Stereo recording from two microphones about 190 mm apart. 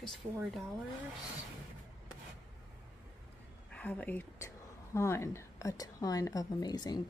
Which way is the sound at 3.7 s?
10° left (ahead or behind).